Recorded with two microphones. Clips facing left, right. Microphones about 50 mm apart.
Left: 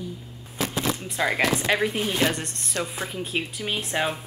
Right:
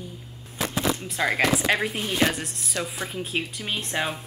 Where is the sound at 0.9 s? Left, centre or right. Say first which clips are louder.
Even; centre.